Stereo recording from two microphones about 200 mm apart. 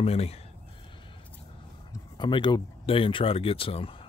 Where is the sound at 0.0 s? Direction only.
30° left (ahead or behind).